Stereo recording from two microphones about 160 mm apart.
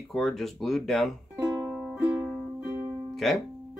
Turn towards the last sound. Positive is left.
turn(degrees=0)  # may be behind; listen again after turning